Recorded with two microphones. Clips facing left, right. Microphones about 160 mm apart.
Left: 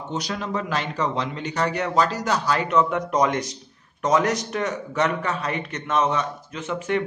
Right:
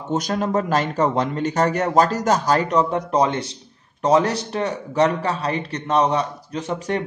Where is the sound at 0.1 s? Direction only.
45° right (ahead or behind).